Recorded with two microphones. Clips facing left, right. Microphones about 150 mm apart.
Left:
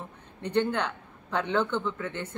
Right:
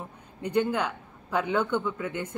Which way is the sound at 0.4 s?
10° right (ahead or behind).